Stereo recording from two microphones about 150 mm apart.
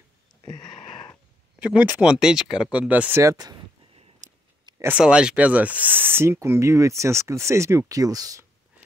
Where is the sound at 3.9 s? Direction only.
40° right (ahead or behind).